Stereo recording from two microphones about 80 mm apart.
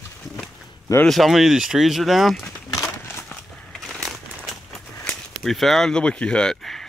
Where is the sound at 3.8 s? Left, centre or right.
Centre.